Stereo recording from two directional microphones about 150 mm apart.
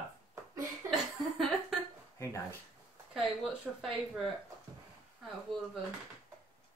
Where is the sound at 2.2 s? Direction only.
20° left (ahead or behind).